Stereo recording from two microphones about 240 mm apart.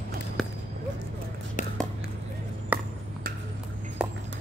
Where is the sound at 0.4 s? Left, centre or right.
Centre.